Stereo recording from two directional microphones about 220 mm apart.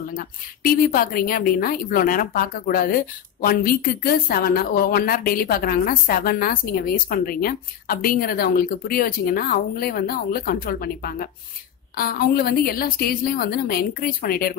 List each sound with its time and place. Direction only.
0.7 s a woman's voice: 40° left (ahead or behind)